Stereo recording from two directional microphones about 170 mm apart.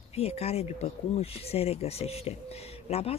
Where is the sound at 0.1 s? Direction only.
35° left (ahead or behind).